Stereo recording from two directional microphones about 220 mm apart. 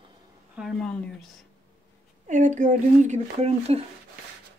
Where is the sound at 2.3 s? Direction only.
35° right (ahead or behind).